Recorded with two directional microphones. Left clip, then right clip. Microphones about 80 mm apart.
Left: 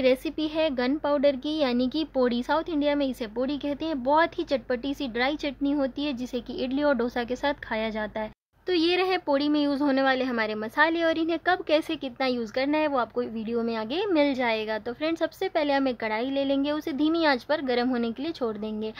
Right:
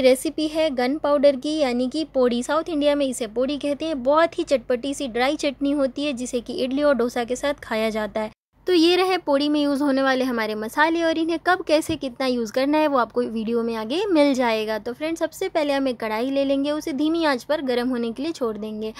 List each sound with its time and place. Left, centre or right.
0.0 s a woman's voice: right
2.7 s a woman's voice: right
5.3 s a woman's voice: right
7.7 s a woman's voice: right
9.3 s a woman's voice: right
10.1 s a woman's voice: right
12.5 s a woman's voice: right
13.6 s a woman's voice: right
14.1 s a woman's voice: right
15.0 s a woman's voice: right
15.4 s a woman's voice: right